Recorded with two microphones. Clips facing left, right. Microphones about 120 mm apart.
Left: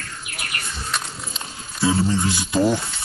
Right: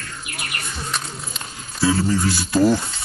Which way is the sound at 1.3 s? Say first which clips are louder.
Right 4 dB; 20° left (ahead or behind).